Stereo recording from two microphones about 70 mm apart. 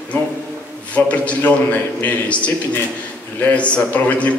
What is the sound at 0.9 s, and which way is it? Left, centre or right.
A man's voice, centre.